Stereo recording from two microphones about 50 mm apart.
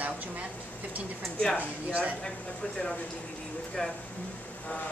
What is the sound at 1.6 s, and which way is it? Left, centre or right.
Speech, right.